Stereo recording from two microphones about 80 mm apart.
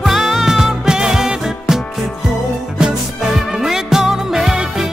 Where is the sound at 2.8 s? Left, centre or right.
Centre.